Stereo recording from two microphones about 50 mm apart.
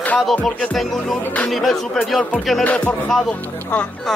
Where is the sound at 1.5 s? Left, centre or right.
Centre.